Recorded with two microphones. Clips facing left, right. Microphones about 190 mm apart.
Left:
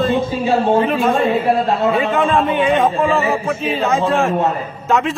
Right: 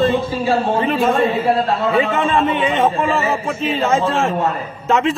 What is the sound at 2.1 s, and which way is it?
A man's voice, centre (ahead or behind).